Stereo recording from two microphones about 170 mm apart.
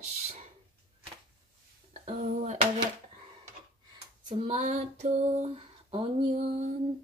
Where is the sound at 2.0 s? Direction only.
45° right (ahead or behind).